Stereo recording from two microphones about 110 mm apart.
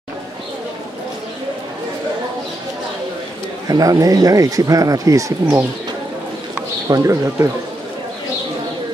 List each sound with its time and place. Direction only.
3.6 s speech: 35° right (ahead or behind)
6.9 s speech: 30° right (ahead or behind)